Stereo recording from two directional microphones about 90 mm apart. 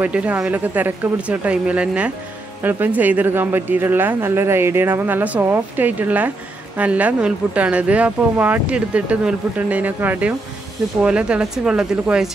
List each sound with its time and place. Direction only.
0.0 s speech: 15° right (ahead or behind)